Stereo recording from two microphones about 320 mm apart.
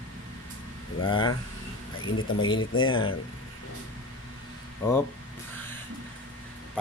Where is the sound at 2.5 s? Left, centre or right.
Left.